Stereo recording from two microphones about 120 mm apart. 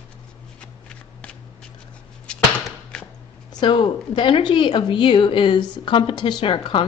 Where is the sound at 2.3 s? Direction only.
5° left (ahead or behind).